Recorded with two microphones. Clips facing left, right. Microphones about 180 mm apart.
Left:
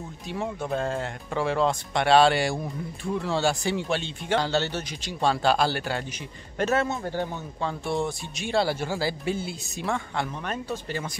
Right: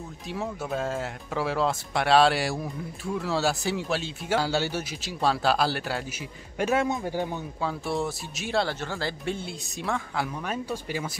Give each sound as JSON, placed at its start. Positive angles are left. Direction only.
{"t": 0.3, "sound": "speech", "side_deg": 0}
{"t": 6.6, "sound": "a man's voice", "side_deg": -10}
{"t": 8.6, "sound": "speech", "side_deg": 10}